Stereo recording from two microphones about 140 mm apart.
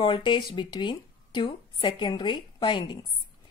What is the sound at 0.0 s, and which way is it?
Speech, 35° left (ahead or behind).